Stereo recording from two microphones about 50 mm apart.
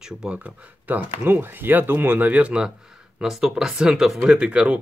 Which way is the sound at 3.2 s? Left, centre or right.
Centre.